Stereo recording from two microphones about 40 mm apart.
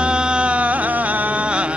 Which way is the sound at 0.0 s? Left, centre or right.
Right.